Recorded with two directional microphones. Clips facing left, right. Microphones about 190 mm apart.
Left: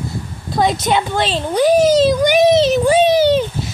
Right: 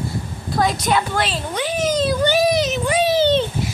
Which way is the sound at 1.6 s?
35° left (ahead or behind).